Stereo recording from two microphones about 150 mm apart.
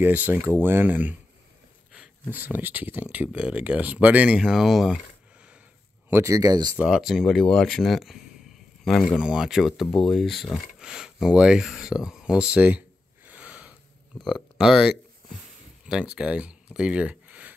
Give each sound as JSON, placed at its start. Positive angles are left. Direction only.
{"t": 0.0, "sound": "speech", "side_deg": -15}
{"t": 6.0, "sound": "speech", "side_deg": -20}
{"t": 6.8, "sound": "speech", "side_deg": 0}